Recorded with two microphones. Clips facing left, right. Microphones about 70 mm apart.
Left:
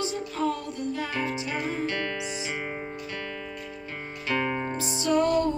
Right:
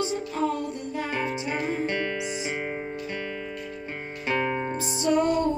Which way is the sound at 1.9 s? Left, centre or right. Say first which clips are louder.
Right 2 dB; centre.